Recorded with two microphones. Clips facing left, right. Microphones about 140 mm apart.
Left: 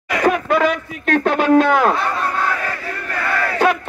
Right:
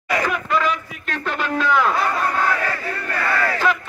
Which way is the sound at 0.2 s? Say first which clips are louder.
Left 9 dB; 60° left (ahead or behind).